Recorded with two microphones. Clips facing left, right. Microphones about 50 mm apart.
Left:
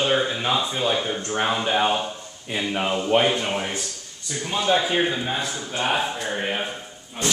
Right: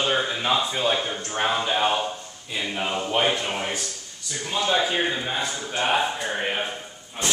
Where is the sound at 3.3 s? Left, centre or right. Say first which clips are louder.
Left 2 dB; centre.